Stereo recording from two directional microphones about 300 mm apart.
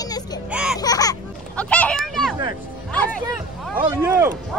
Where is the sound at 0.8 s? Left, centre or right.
Centre.